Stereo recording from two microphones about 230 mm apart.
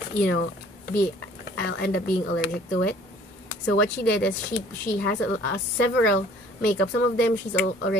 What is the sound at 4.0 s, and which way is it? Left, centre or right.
A woman's voice, left.